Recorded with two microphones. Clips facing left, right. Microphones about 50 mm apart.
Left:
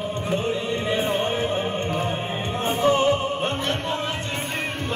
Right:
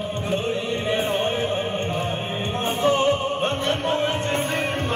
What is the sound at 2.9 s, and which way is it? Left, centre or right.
Music, right.